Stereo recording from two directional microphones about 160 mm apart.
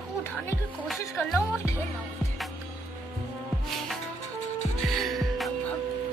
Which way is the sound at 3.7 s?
Centre (ahead or behind).